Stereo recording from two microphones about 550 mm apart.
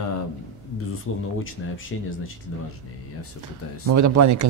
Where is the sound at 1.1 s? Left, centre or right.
Left.